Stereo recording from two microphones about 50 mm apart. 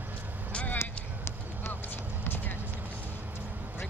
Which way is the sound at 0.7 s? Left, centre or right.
Left.